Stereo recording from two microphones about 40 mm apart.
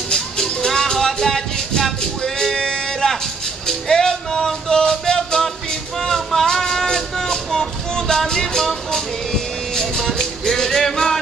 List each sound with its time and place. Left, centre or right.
0.1 s music: centre
9.8 s music: centre